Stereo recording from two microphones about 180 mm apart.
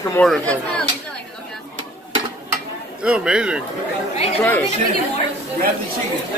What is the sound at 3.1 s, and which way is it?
Speech, 5° right (ahead or behind).